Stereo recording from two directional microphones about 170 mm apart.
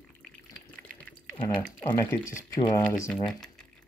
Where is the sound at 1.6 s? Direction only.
10° left (ahead or behind).